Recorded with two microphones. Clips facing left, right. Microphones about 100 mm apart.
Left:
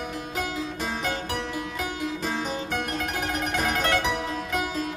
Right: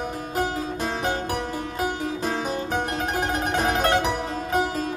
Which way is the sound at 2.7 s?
40° right (ahead or behind).